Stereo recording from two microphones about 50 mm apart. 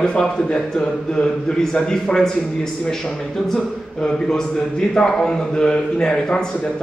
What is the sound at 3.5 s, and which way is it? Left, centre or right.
A man's voice, centre.